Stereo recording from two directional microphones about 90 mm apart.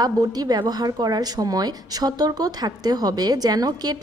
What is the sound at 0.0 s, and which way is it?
A woman's voice, 45° right (ahead or behind).